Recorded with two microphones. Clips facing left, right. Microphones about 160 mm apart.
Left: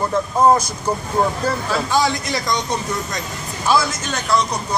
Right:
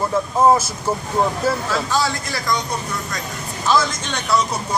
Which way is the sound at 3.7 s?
10° left (ahead or behind).